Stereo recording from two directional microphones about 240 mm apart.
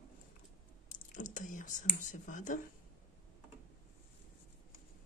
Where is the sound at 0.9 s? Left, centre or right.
Left.